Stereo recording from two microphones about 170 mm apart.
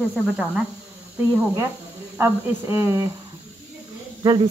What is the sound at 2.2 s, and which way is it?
Speech, 15° right (ahead or behind).